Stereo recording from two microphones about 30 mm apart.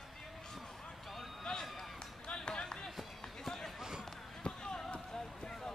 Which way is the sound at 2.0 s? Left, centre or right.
Left.